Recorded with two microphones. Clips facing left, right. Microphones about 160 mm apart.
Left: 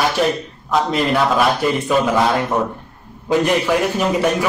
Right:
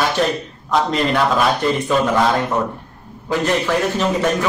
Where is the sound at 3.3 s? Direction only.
15° left (ahead or behind).